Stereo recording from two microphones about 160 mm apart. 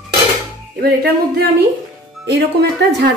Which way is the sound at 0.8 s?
75° right (ahead or behind).